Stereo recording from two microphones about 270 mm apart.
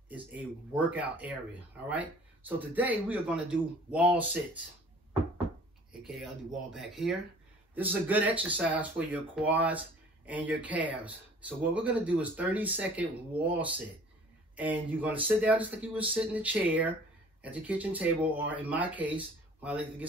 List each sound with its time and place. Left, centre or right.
0.1 s speech: centre
6.0 s speech: centre